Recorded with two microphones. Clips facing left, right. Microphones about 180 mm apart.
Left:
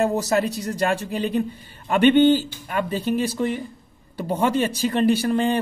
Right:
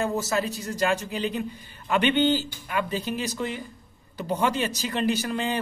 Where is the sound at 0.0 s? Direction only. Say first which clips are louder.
Left 5 dB; 35° left (ahead or behind).